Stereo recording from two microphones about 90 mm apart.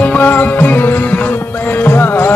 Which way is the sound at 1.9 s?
20° left (ahead or behind).